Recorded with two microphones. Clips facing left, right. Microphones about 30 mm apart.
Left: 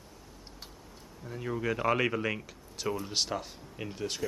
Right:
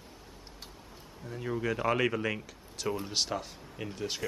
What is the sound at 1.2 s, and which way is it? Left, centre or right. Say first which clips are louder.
Speech: even; centre.